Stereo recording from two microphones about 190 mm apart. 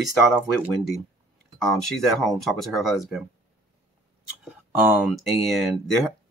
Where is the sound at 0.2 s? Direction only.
5° right (ahead or behind).